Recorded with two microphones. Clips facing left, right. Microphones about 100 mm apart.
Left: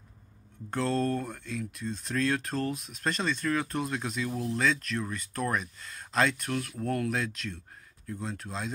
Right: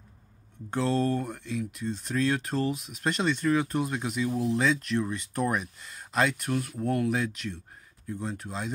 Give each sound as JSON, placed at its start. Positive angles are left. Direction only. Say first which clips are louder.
{"t": 0.7, "sound": "speech", "louder": "right 2 dB", "side_deg": -15}